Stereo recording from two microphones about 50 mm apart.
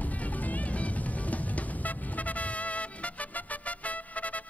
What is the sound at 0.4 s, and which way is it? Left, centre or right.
Music, left.